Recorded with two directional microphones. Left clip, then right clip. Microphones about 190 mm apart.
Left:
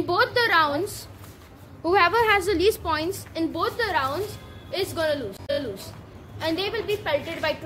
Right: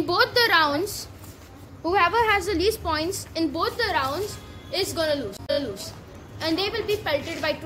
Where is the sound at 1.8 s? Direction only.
30° left (ahead or behind).